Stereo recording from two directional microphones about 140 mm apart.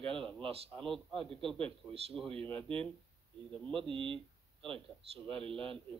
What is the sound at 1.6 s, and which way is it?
Speech, 40° right (ahead or behind).